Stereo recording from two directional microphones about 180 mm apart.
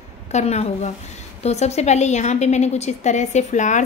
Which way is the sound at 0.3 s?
40° left (ahead or behind).